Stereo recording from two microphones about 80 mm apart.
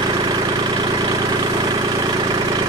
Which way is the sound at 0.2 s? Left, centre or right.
Right.